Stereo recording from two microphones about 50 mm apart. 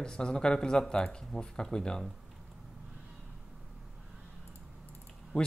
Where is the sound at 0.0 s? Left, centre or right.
Centre.